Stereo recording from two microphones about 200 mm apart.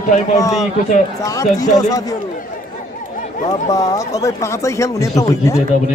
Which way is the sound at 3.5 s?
15° left (ahead or behind).